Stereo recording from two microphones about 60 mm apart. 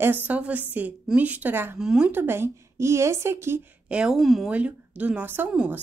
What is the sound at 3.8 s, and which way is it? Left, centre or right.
Speech, centre.